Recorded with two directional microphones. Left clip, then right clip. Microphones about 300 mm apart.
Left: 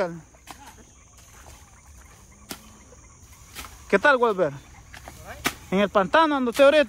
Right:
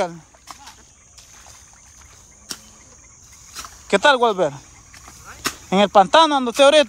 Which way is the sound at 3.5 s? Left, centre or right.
Centre.